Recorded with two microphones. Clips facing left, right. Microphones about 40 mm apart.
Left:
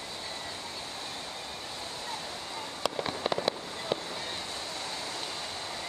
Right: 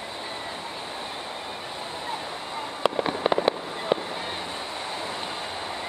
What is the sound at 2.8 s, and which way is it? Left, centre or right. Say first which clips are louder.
Fireworks: right 8 dB; right.